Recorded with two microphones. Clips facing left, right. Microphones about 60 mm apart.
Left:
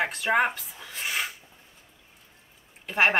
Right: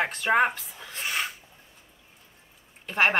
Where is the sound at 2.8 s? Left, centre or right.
Centre.